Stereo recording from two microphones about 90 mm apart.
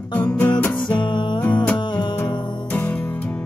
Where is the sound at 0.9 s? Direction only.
60° left (ahead or behind).